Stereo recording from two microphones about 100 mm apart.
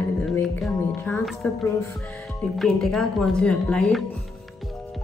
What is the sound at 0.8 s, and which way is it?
Speech, 25° left (ahead or behind).